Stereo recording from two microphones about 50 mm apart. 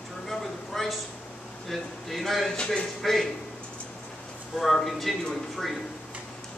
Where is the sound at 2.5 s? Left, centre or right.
Centre.